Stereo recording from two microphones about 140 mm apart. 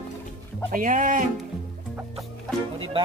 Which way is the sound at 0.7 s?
75° right (ahead or behind).